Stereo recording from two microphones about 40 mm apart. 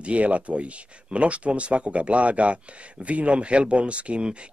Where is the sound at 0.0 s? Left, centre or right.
Right.